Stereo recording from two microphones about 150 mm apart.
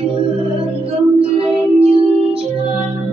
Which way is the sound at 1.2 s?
40° right (ahead or behind).